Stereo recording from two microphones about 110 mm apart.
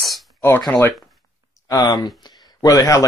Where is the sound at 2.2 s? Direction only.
40° left (ahead or behind).